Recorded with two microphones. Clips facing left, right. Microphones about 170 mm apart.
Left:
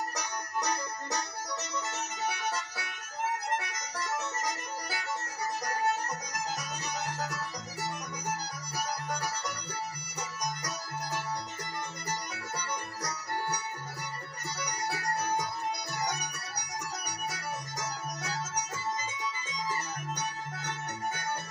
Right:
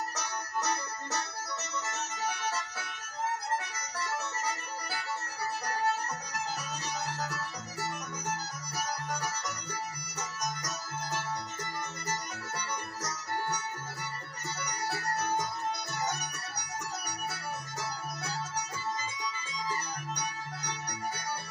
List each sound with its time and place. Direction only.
0.1 s music: 15° left (ahead or behind)
3.5 s music: 15° left (ahead or behind)
12.1 s music: 15° left (ahead or behind)
14.6 s keyboard: 15° left (ahead or behind)
16.0 s music: 15° left (ahead or behind)
20.2 s music: 25° left (ahead or behind)